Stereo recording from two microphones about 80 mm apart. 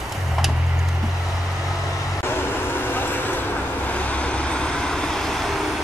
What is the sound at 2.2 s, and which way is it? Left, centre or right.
Vehicle, left.